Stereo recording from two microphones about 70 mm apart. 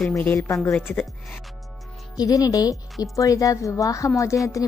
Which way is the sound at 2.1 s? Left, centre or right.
Left.